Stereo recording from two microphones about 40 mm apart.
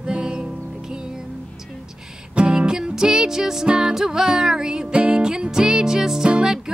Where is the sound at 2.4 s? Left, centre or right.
Right.